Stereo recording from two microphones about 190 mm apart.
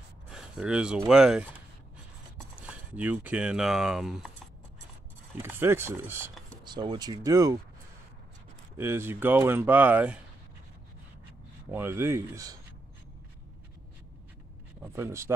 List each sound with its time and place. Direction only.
0.3 s speech: 5° right (ahead or behind)
2.6 s speech: 5° right (ahead or behind)
5.4 s speech: 15° right (ahead or behind)
8.7 s speech: 10° right (ahead or behind)
11.7 s speech: 15° right (ahead or behind)
14.8 s speech: 15° right (ahead or behind)